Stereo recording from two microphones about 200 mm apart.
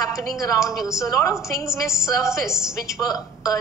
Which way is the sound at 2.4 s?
5° right (ahead or behind).